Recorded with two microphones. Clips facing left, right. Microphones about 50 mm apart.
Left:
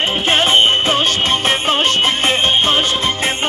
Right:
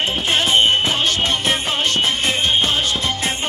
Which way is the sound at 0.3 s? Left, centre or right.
Left.